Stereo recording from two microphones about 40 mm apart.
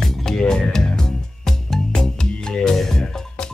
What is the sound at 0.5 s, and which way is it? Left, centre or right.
Speech, centre.